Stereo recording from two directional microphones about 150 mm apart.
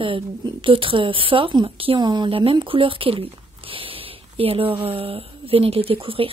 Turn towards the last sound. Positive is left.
turn(degrees=-40)  # may be behind; listen again after turning